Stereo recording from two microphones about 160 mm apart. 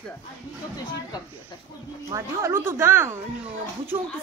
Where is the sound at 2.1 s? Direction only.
15° right (ahead or behind).